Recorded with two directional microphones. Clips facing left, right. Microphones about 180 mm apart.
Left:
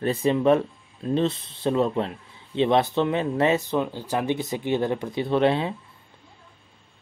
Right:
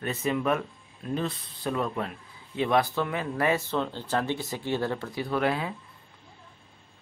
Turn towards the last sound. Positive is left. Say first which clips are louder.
# left 6 dB
turn(degrees=25)  # may be behind; listen again after turning